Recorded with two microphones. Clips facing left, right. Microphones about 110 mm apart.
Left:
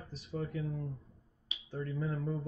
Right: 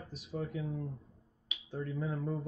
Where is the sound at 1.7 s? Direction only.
5° right (ahead or behind).